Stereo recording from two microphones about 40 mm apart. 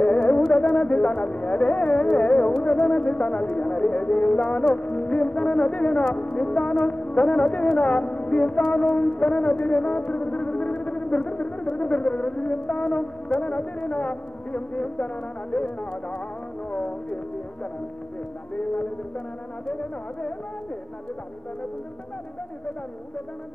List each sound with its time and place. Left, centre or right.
0.0 s music: left
2.6 s speech: left
6.1 s music: left
15.5 s speech: left
16.7 s music: left
19.7 s speech: left